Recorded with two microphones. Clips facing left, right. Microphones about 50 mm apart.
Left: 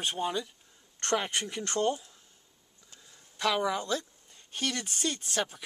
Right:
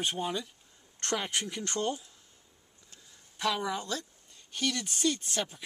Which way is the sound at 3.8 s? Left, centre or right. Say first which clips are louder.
Left 4 dB; centre.